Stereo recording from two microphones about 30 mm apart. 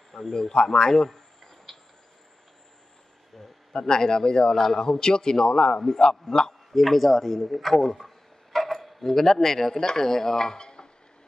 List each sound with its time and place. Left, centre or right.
0.2 s a man's voice: centre
0.8 s a sound: centre
3.7 s a man's voice: left
6.3 s speech: centre
8.5 s a sound: centre
8.8 s speech: centre; by 10.9 s left